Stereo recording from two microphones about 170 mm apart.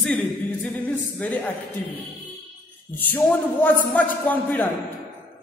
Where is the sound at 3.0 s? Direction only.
10° left (ahead or behind).